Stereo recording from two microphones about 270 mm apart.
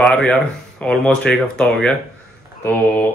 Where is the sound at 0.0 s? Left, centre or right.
Centre.